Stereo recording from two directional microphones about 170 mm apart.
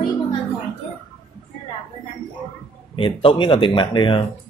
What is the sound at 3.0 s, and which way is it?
Speech, 30° left (ahead or behind).